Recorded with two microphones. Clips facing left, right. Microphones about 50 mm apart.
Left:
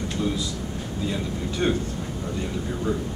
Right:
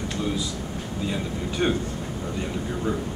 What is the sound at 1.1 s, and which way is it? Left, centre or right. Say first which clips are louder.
Speech: even; centre.